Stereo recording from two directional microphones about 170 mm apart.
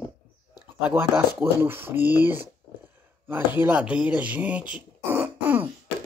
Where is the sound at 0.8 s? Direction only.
10° right (ahead or behind).